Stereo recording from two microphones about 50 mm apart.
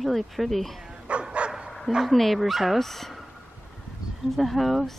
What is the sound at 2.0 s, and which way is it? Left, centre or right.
Speech, centre.